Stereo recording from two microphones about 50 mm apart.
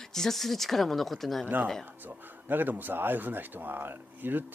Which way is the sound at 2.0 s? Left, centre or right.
Right.